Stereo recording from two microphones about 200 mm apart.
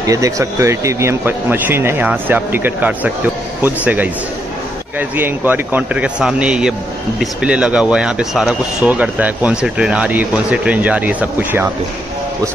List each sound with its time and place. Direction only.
0.0 s speech: 15° right (ahead or behind)
5.1 s speech: 10° right (ahead or behind)